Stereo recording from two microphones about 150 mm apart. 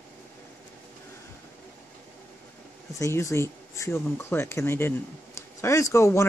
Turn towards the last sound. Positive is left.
turn(degrees=20)  # may be behind; listen again after turning